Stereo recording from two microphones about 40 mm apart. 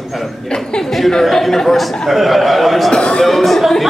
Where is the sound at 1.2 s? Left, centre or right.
Centre.